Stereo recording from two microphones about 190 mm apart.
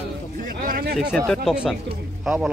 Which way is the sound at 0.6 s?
50° right (ahead or behind).